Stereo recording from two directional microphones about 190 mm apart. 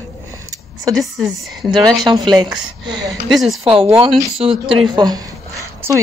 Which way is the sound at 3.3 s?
Centre (ahead or behind).